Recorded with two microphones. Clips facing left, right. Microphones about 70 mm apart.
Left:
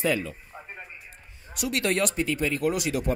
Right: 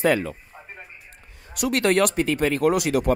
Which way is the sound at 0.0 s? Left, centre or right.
Right.